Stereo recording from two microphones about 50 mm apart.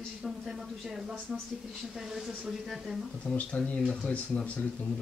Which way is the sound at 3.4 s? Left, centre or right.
Left.